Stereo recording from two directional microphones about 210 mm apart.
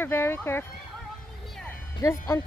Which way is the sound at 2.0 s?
15° left (ahead or behind).